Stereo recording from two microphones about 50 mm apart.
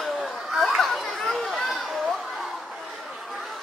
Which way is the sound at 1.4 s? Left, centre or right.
Centre.